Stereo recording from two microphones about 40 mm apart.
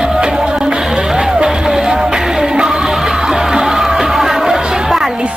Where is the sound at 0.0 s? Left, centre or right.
Centre.